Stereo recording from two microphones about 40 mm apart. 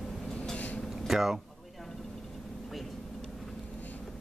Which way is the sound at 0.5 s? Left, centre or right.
Left.